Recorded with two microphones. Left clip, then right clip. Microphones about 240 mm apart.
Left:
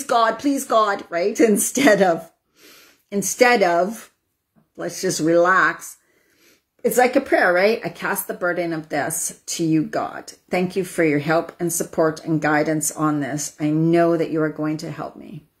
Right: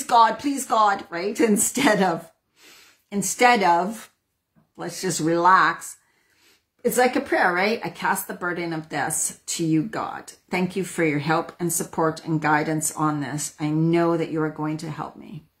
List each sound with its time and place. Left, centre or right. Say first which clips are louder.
0.0 s speech: right 1 dB; centre
4.8 s speech: left 4 dB; right
5.2 s speech: left 1 dB; centre
6.9 s speech: left 4 dB; centre